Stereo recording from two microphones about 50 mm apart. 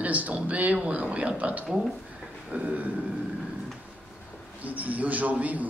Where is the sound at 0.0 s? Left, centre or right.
Right.